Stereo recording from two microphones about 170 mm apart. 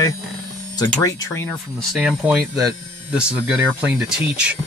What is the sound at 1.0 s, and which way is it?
Speech, 20° left (ahead or behind).